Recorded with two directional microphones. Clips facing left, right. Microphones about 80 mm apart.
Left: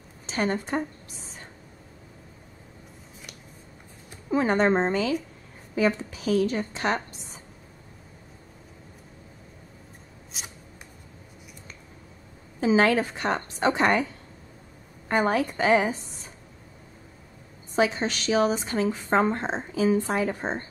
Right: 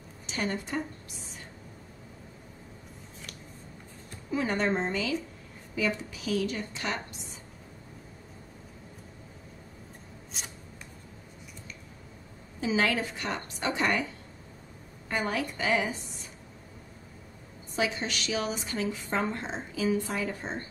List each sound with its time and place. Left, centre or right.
0.3 s a woman's voice: left
4.3 s a woman's voice: left
10.3 s shuffling cards: centre
12.5 s a woman's voice: left
15.0 s a woman's voice: left
17.7 s a woman's voice: left